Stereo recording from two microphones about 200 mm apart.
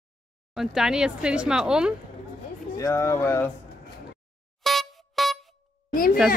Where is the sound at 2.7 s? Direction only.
15° left (ahead or behind).